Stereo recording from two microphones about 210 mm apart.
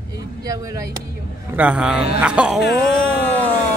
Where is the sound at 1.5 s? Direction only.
5° right (ahead or behind).